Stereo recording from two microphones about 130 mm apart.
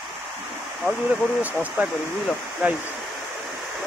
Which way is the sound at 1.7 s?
Centre (ahead or behind).